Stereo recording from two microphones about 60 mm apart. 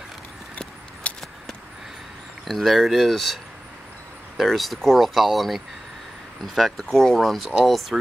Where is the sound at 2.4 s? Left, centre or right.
Centre.